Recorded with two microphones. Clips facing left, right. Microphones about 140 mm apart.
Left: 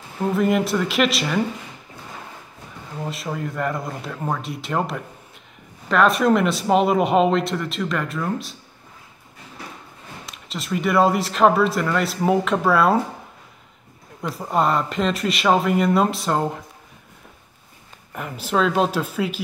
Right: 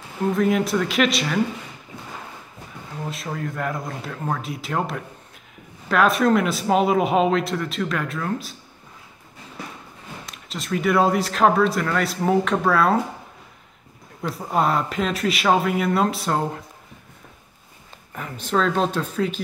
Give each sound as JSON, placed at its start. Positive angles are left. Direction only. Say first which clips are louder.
{"t": 0.4, "sound": "speech", "louder": "left 1 dB", "side_deg": 0}
{"t": 3.1, "sound": "speech", "louder": "left 1 dB", "side_deg": 0}
{"t": 10.2, "sound": "speech", "louder": "left 2 dB", "side_deg": 0}
{"t": 14.2, "sound": "speech", "louder": "left 1 dB", "side_deg": 0}
{"t": 18.1, "sound": "speech", "louder": "left 1 dB", "side_deg": 5}